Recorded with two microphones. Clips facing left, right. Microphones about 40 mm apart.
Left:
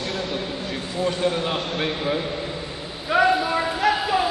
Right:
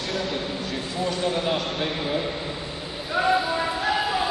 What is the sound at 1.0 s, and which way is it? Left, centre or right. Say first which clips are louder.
Speech: left 2 dB; left.